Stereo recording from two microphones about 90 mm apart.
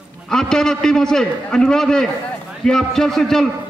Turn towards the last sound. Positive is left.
turn(degrees=5)  # may be behind; listen again after turning